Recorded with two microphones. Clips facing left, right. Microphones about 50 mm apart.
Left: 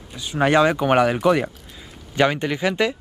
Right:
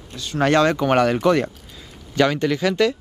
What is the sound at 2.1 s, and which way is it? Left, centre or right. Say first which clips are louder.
Speech: right 1 dB; left.